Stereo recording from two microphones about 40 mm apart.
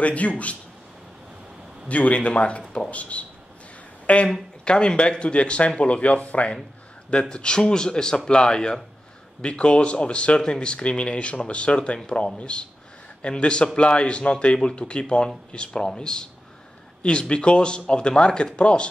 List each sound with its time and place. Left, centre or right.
0.0 s speech: left
1.9 s speech: left
4.0 s a sound: left
4.6 s speech: left